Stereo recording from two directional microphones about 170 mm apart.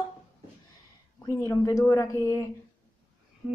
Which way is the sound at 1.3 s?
15° left (ahead or behind).